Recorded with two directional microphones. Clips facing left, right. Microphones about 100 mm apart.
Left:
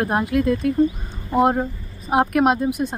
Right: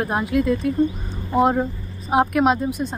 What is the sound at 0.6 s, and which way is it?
Speech, 55° left (ahead or behind).